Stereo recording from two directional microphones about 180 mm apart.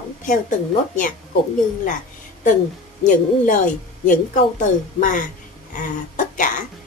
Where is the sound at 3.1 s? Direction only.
45° left (ahead or behind).